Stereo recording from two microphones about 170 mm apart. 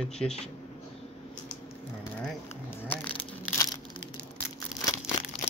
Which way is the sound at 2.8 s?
10° left (ahead or behind).